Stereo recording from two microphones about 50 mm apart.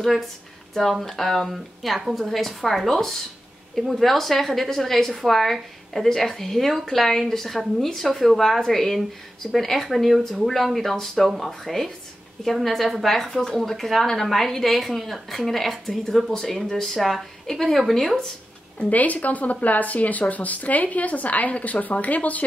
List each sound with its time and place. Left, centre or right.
0.0 s a woman's voice: centre
18.8 s speech: left